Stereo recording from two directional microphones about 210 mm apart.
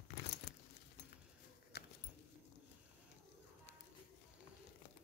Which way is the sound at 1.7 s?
50° left (ahead or behind).